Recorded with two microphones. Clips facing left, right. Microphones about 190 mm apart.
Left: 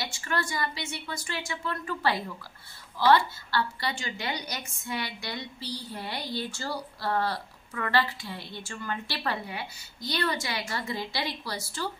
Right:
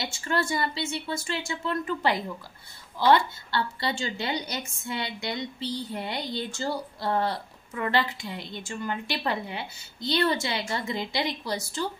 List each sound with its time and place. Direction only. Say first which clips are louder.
0.0 s a woman's voice: right 3 dB; 25° right (ahead or behind)